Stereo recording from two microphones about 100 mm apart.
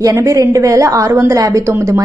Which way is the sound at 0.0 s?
30° right (ahead or behind).